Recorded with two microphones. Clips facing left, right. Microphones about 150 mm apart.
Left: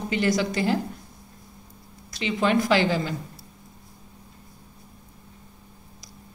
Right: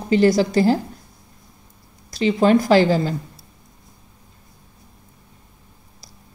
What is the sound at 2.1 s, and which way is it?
Speech, 40° right (ahead or behind).